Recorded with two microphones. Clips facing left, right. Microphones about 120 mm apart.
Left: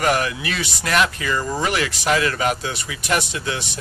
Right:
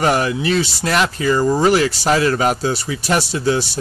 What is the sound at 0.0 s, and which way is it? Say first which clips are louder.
Speech: right 4 dB; 30° right (ahead or behind).